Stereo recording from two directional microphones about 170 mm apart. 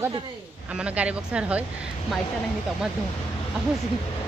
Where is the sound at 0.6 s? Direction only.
5° right (ahead or behind).